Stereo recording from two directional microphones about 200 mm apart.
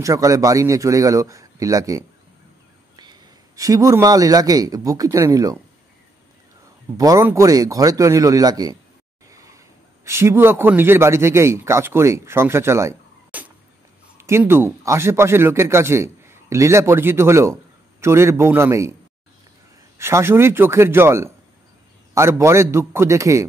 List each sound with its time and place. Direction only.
0.0 s a man's voice: 15° right (ahead or behind)
7.0 s a man's voice: 15° right (ahead or behind)
9.3 s a sound: 15° right (ahead or behind)
10.0 s a man's voice: 15° right (ahead or behind)
20.0 s a man's voice: 15° right (ahead or behind)